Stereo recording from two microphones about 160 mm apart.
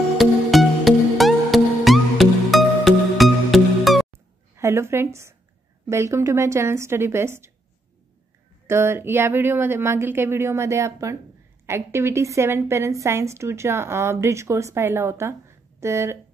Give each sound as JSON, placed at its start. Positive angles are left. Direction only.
{"t": 0.2, "sound": "music", "side_deg": 0}
{"t": 4.1, "sound": "a sound", "side_deg": -15}
{"t": 5.9, "sound": "a woman's voice", "side_deg": -15}
{"t": 8.6, "sound": "a woman's voice", "side_deg": -15}